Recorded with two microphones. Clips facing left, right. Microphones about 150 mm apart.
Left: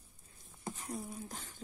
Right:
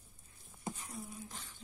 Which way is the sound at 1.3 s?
45° left (ahead or behind).